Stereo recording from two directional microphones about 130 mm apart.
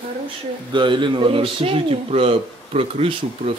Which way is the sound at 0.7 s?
40° right (ahead or behind).